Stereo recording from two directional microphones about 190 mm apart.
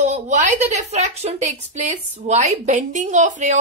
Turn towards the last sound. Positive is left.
turn(degrees=-40)  # may be behind; listen again after turning